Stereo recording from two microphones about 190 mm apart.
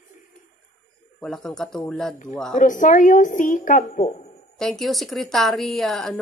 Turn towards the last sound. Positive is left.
turn(degrees=0)  # may be behind; listen again after turning